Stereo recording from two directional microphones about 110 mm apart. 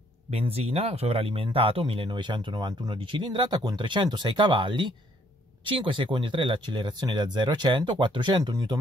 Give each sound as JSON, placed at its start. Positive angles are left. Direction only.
{"t": 0.3, "sound": "speech", "side_deg": -65}